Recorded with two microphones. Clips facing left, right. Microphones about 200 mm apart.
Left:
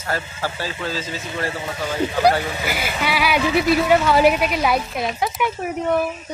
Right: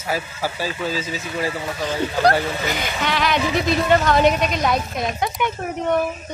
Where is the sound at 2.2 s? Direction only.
10° left (ahead or behind).